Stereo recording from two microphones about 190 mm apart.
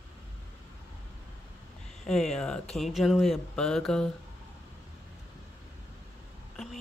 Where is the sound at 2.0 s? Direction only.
5° left (ahead or behind).